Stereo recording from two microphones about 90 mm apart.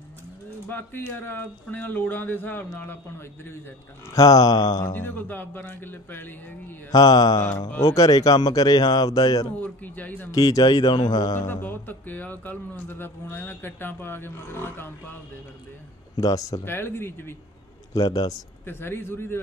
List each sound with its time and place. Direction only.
0.7 s speech: 20° left (ahead or behind)
4.1 s speech: 40° left (ahead or behind)
4.9 s speech: 20° left (ahead or behind)
6.9 s speech: 50° left (ahead or behind)
9.6 s speech: 20° left (ahead or behind)
10.3 s speech: 50° left (ahead or behind)
11.4 s speech: 25° left (ahead or behind)
16.2 s speech: 40° left (ahead or behind)
16.6 s speech: 25° left (ahead or behind)
17.9 s speech: 45° left (ahead or behind)
18.7 s speech: 25° left (ahead or behind)